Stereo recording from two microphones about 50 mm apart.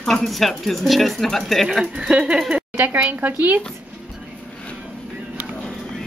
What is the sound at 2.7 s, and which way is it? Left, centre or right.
Speech, right.